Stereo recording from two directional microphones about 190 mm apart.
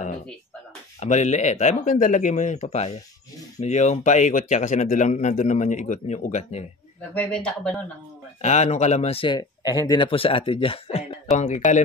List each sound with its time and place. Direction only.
0.9 s a man's voice: 40° left (ahead or behind)
7.0 s speech: 5° left (ahead or behind)
8.4 s a man's voice: 40° left (ahead or behind)